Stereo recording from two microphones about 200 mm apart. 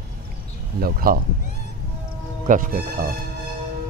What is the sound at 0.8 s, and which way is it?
Speech, 45° right (ahead or behind).